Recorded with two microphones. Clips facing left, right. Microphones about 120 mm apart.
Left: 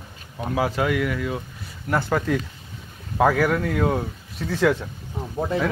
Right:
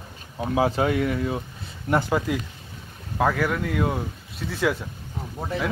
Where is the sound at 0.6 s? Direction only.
25° right (ahead or behind).